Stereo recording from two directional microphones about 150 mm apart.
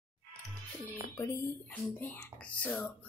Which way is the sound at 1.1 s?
20° left (ahead or behind).